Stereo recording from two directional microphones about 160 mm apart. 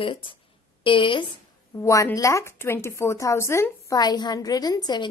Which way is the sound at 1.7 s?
20° left (ahead or behind).